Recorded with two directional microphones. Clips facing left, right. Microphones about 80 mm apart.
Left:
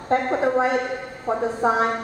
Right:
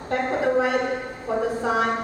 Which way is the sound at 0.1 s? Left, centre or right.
Left.